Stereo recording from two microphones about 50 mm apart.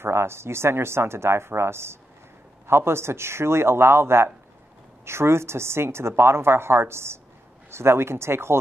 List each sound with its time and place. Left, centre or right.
0.0 s a woman's voice: right